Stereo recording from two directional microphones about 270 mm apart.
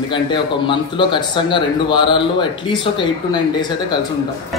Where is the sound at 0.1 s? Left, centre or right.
Centre.